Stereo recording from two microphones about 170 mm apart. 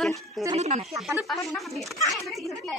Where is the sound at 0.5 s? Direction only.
40° right (ahead or behind).